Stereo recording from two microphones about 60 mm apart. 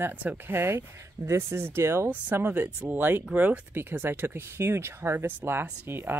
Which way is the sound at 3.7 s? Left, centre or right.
Right.